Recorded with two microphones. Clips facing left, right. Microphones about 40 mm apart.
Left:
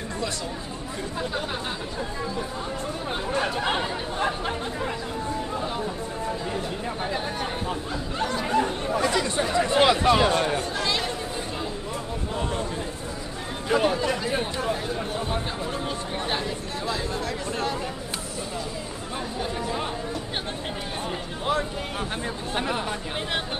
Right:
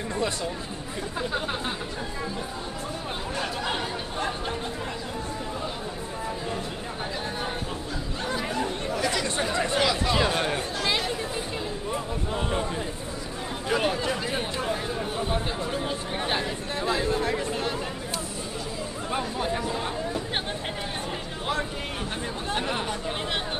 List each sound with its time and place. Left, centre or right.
3.3 s speech: left
9.0 s chatter: centre
9.8 s a sound: left
10.1 s a sound: centre
12.4 s speech: centre
13.7 s speech: centre
16.8 s speech: right